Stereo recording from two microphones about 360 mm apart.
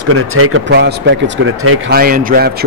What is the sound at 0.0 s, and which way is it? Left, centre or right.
Speech, right.